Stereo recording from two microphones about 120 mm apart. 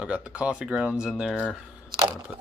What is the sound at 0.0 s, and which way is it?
Speech, 10° right (ahead or behind).